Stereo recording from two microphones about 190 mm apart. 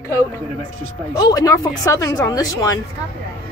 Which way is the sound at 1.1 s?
20° left (ahead or behind).